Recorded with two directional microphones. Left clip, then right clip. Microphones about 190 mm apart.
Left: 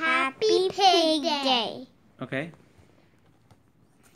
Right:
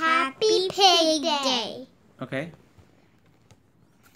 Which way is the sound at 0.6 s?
45° right (ahead or behind).